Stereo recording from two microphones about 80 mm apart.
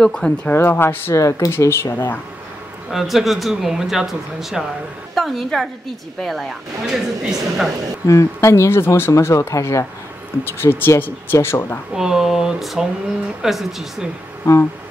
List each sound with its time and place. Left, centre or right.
0.0 s speech: centre
0.6 s speech: left
2.9 s speech: centre
6.9 s speech: centre
8.1 s speech: left
11.9 s speech: centre
14.4 s speech: left